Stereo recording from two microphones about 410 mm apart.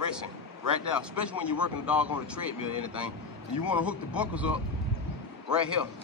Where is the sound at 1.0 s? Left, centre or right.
Centre.